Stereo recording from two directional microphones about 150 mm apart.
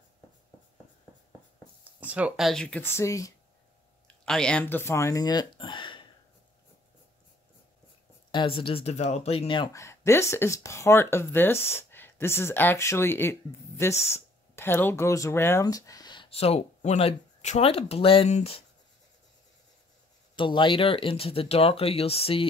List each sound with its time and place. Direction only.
2.0 s speech: 10° right (ahead or behind); by 3.3 s 20° left (ahead or behind)
4.3 s speech: 5° left (ahead or behind); by 6.0 s 35° left (ahead or behind)
8.3 s speech: 35° left (ahead or behind)
9.7 s speech: 20° left (ahead or behind); by 18.6 s 45° left (ahead or behind)
20.3 s speech: 35° left (ahead or behind)